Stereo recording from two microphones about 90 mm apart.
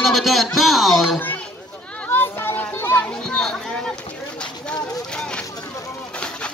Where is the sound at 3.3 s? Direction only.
5° left (ahead or behind).